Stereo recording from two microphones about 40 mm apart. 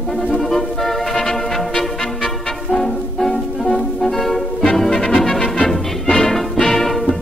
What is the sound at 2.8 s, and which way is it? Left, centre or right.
Music, centre.